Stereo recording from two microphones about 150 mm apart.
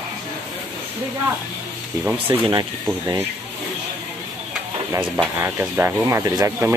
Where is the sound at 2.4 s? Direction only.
25° right (ahead or behind).